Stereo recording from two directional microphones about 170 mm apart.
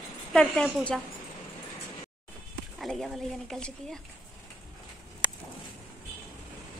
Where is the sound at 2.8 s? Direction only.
Centre (ahead or behind).